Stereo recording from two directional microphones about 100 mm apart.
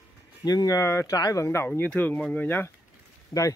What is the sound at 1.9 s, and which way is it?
Speech, 10° left (ahead or behind).